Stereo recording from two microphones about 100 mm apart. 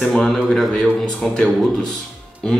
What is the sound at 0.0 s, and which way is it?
Speech, 5° left (ahead or behind).